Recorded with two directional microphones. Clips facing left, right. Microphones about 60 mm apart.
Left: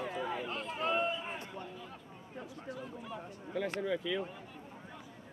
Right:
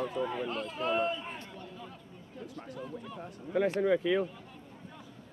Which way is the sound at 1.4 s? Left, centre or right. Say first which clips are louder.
Left 2 dB; left.